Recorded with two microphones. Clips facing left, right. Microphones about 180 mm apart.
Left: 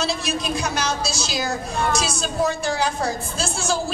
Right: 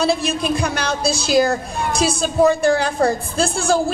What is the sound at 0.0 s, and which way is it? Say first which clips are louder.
A woman's voice: right 6 dB; 55° right (ahead or behind).